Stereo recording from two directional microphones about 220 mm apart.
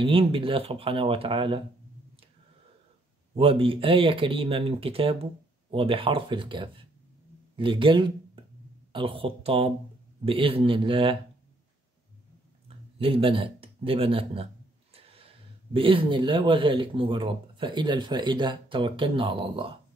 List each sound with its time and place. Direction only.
0.0 s speech: 25° right (ahead or behind)
3.3 s speech: 25° right (ahead or behind)
12.6 s speech: 25° right (ahead or behind)